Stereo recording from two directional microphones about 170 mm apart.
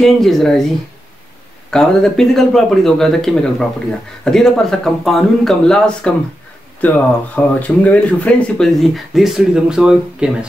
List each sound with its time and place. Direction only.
0.0 s speech: centre (ahead or behind)
1.7 s speech: 5° left (ahead or behind)